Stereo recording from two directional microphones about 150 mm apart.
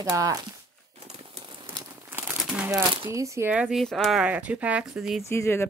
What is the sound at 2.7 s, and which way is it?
Speech, 20° right (ahead or behind).